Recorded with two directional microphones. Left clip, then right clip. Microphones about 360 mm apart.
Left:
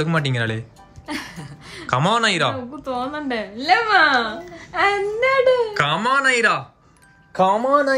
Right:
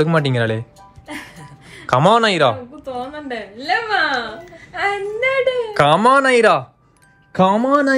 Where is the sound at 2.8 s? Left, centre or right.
Centre.